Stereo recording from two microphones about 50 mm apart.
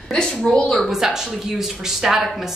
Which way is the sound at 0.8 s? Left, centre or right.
Centre.